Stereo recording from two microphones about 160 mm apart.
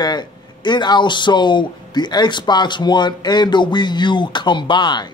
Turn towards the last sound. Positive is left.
turn(degrees=30)  # may be behind; listen again after turning